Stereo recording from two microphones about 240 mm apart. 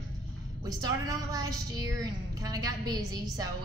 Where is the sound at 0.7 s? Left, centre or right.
Centre.